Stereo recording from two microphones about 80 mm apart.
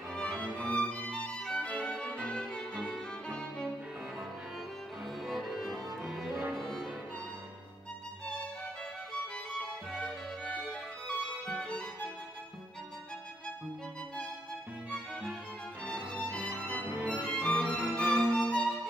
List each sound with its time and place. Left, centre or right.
0.1 s music: centre
5.2 s music: centre
10.5 s music: centre
15.9 s music: centre
16.8 s music: right
17.1 s music: centre